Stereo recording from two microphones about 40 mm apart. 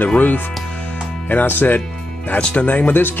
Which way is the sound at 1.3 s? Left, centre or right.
Left.